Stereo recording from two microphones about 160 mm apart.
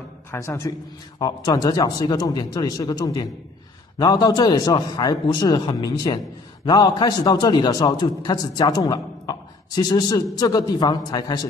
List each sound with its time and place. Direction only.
0.3 s a man's voice: 15° left (ahead or behind)